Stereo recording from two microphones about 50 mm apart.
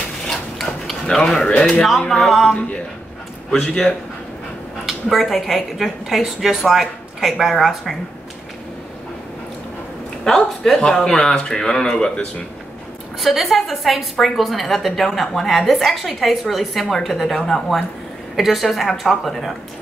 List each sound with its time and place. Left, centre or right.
0.3 s a sound: centre
1.1 s speech: centre
1.9 s a woman's voice: centre
3.4 s speech: centre
4.8 s a woman's voice: centre
10.2 s speech: centre
13.2 s a woman's voice: centre